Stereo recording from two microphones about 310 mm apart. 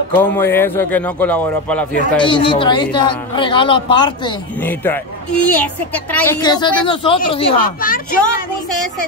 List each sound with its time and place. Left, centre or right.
0.1 s a man's voice: centre
2.2 s a man's voice: centre
8.6 s a man's voice: centre